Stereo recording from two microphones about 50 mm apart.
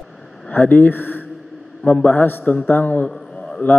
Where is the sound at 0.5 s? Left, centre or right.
Left.